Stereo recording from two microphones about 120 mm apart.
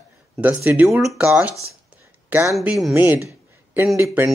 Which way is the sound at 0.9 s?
Centre (ahead or behind).